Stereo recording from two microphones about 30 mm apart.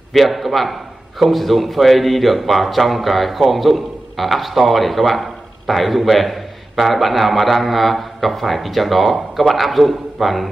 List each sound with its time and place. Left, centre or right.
0.1 s speech: centre